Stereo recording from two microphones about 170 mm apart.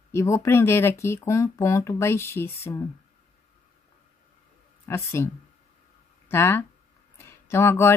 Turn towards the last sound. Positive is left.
turn(degrees=15)  # may be behind; listen again after turning